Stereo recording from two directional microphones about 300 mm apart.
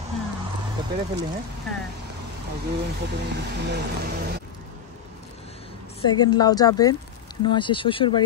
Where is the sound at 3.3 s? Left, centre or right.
Right.